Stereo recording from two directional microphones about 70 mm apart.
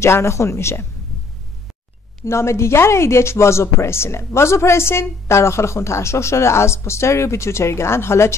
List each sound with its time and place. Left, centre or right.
0.0 s a woman's voice: left
2.2 s a woman's voice: left